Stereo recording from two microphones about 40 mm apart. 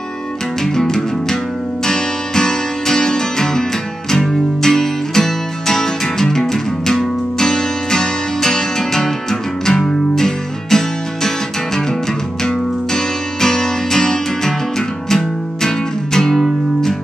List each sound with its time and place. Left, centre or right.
0.7 s music: centre